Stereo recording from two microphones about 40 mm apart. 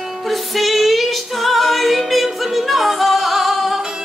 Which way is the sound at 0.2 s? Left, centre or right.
Centre.